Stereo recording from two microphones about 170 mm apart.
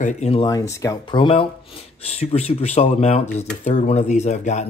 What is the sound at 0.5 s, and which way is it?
Speech, 20° left (ahead or behind).